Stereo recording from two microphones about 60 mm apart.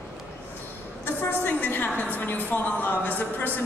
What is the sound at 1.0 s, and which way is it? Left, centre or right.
A woman's voice, left.